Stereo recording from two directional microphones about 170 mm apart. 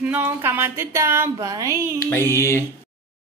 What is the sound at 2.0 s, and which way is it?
Speech, 10° left (ahead or behind).